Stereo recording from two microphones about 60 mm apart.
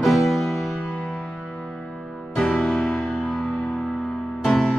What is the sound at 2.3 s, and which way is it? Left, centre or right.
Music, centre.